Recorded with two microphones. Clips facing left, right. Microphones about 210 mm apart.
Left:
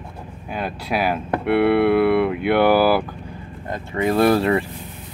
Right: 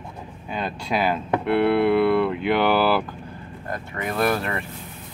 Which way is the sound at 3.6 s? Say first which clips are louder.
Left 8 dB; 25° left (ahead or behind).